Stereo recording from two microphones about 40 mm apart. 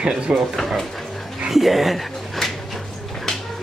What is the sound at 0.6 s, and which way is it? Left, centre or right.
Speech, centre.